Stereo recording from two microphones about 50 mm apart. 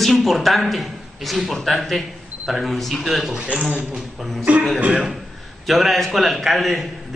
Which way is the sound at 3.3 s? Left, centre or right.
Centre.